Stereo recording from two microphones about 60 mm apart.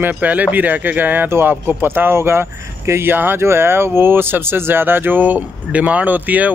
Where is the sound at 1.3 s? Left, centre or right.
Right.